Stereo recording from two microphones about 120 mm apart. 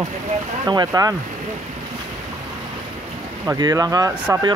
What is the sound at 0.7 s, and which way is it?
Speech, 35° right (ahead or behind).